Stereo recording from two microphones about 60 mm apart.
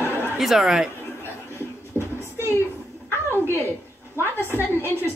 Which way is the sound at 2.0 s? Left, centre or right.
Right.